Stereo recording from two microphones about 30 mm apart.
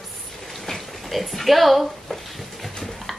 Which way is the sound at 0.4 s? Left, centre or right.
Centre.